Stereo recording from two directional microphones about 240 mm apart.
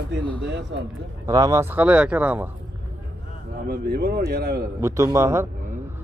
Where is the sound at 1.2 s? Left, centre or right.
Centre.